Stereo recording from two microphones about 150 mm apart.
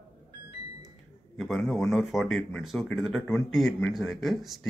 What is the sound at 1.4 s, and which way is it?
Speech, centre (ahead or behind).